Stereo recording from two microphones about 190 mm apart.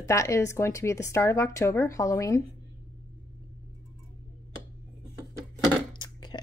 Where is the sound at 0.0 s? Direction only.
15° left (ahead or behind).